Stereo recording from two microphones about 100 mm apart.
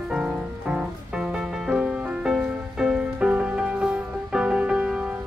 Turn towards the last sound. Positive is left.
turn(degrees=-10)  # may be behind; listen again after turning